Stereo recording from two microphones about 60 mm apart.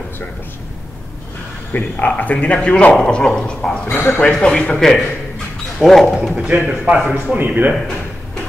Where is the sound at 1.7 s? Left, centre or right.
Left.